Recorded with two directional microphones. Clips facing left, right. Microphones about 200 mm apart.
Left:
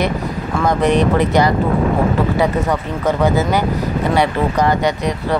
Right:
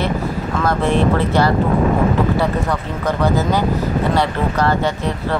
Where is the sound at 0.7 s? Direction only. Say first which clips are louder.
Left 2 dB; 15° left (ahead or behind).